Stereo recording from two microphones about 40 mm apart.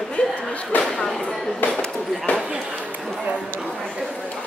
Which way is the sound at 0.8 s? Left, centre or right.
Centre.